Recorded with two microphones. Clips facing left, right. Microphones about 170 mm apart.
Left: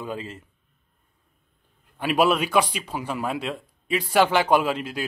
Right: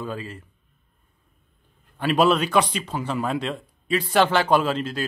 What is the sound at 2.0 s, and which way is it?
A man's voice, 10° left (ahead or behind).